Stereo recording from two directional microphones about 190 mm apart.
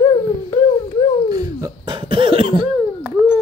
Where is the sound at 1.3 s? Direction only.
20° right (ahead or behind).